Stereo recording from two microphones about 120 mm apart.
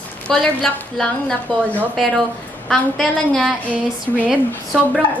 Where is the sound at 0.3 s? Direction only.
5° left (ahead or behind).